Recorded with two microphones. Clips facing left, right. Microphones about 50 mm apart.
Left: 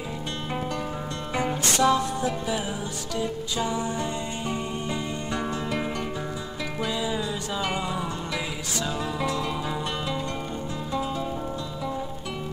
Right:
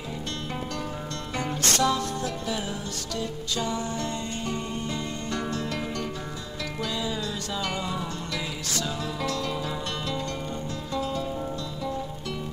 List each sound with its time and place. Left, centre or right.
1.3 s music: centre